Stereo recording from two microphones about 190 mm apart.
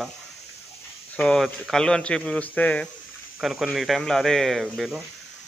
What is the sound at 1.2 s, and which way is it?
Speech, centre (ahead or behind).